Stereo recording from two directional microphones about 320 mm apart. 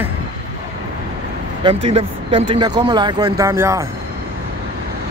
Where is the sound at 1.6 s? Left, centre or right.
Centre.